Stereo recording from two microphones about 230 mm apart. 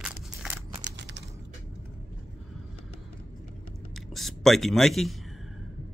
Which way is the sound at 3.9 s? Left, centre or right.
Centre.